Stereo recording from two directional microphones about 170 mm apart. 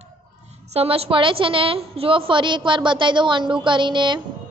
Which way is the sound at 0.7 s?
35° right (ahead or behind).